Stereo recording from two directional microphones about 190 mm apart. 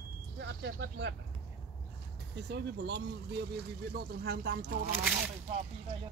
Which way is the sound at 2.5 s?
60° right (ahead or behind).